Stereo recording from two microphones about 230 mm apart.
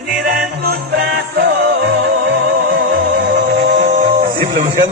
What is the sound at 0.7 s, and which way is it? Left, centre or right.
Music, right.